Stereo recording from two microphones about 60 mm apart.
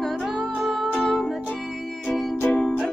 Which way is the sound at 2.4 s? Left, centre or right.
Left.